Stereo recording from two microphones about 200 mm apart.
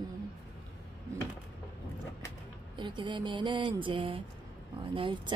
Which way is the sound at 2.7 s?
25° right (ahead or behind).